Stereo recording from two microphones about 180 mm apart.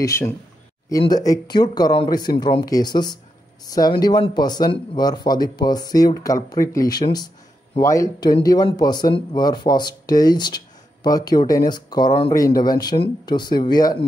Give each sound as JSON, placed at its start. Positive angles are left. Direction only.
{"t": 0.0, "sound": "speech", "side_deg": 15}